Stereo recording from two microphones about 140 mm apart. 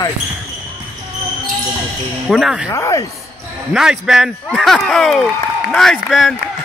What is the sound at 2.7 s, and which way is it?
Speech, 25° left (ahead or behind).